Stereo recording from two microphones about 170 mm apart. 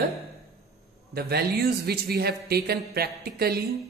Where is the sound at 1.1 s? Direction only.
70° right (ahead or behind).